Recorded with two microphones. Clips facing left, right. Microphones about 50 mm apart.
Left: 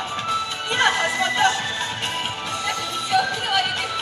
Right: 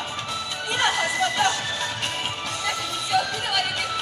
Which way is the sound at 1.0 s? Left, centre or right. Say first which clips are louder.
Left 2 dB; left.